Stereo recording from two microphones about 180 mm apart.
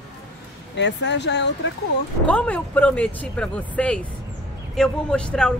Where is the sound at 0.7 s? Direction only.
75° left (ahead or behind).